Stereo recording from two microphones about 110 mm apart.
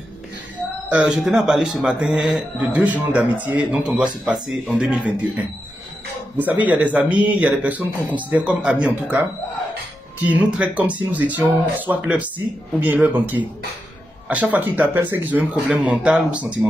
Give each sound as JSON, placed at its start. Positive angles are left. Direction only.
{"t": 0.8, "sound": "speech", "side_deg": -10}
{"t": 10.2, "sound": "speech", "side_deg": -15}